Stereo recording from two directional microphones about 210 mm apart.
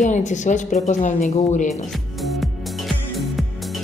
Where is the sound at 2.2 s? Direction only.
Centre (ahead or behind).